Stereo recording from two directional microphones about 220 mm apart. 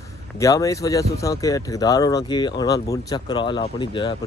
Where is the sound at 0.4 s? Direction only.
15° left (ahead or behind).